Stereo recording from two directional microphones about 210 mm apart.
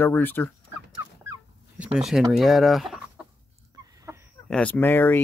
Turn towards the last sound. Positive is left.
turn(degrees=10)  # may be behind; listen again after turning